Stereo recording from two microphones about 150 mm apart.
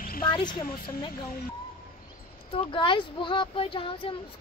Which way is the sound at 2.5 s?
35° left (ahead or behind).